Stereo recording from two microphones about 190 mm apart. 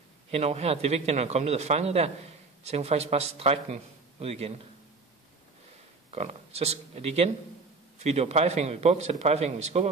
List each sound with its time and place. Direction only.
0.3 s a man's voice: 35° right (ahead or behind)
6.1 s a man's voice: 35° right (ahead or behind)